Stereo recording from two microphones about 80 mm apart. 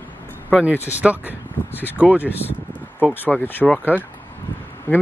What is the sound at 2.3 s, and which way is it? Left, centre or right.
Speech, left.